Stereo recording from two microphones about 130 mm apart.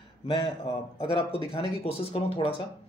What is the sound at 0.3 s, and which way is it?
A man's voice, 40° left (ahead or behind).